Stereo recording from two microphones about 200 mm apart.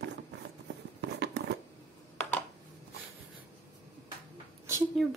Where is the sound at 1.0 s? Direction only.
55° right (ahead or behind).